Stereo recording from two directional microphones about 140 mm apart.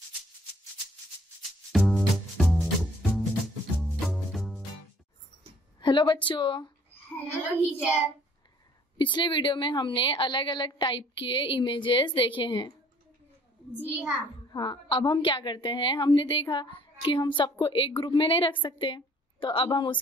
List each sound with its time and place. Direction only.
1.7 s music: centre (ahead or behind)
5.8 s a sound: 35° left (ahead or behind)
6.2 s a woman's voice: 35° left (ahead or behind)
7.3 s child singing: 10° right (ahead or behind)
8.9 s a woman's voice: 35° left (ahead or behind)
13.7 s child singing: 5° right (ahead or behind)
14.5 s a woman's voice: 35° left (ahead or behind)